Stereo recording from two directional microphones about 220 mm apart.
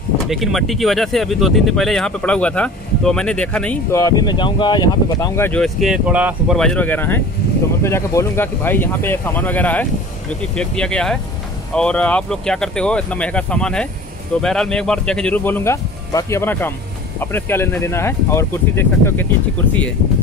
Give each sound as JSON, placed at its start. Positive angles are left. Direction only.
{"t": 0.3, "sound": "speech", "side_deg": 0}